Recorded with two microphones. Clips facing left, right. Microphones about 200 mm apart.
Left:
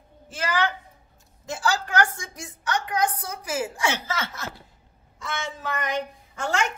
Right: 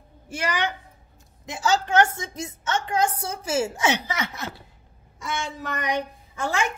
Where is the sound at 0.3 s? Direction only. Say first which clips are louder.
Left 1 dB; 15° right (ahead or behind).